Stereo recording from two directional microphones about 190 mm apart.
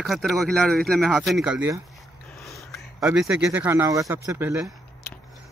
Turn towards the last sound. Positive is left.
turn(degrees=-10)  # may be behind; listen again after turning